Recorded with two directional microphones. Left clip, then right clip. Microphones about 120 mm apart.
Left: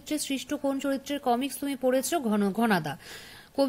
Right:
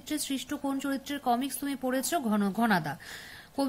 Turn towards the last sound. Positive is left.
turn(degrees=20)  # may be behind; listen again after turning